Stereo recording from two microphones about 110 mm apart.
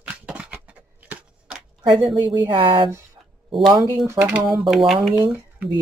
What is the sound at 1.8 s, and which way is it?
Speech, 45° right (ahead or behind).